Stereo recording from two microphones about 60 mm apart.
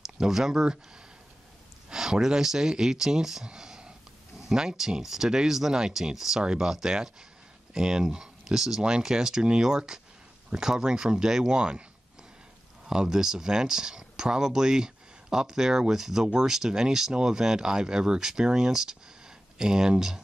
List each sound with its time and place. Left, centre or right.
0.0 s speech: centre
1.9 s speech: centre
12.8 s speech: centre